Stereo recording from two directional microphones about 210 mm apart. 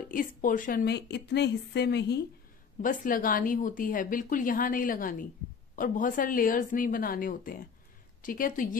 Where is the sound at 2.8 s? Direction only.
40° left (ahead or behind).